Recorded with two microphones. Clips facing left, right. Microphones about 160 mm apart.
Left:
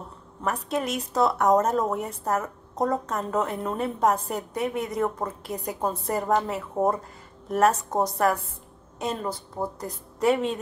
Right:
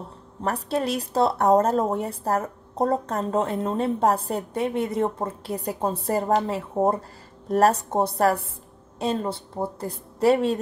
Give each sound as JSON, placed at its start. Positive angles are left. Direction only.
{"t": 0.4, "sound": "a woman's voice", "side_deg": -35}